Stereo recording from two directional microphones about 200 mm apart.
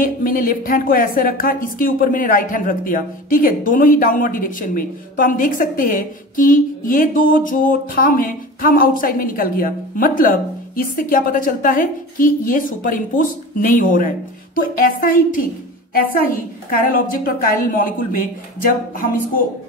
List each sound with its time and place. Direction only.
0.0 s speech: 45° left (ahead or behind)